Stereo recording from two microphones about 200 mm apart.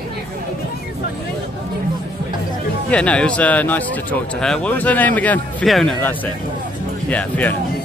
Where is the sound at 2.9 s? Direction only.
5° left (ahead or behind).